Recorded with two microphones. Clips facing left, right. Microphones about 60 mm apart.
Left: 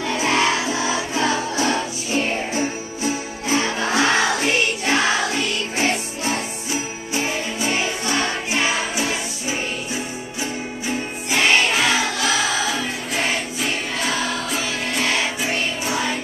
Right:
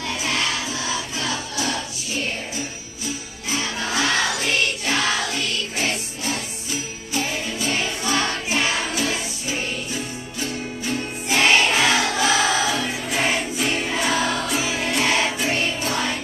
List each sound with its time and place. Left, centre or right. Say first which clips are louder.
0.2 s music: left 7 dB; left; by 16.2 s centre